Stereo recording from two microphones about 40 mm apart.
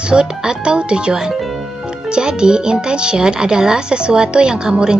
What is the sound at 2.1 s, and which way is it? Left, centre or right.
Speech, right.